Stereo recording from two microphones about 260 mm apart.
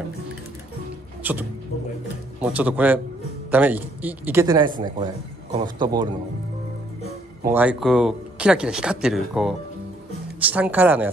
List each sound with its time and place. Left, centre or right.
1.2 s a man's voice: centre
2.4 s a man's voice: centre
7.4 s a man's voice: centre